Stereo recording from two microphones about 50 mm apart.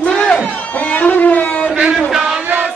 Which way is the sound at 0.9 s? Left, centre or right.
Left.